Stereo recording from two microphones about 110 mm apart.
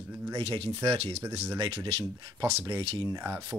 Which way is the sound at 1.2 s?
25° right (ahead or behind).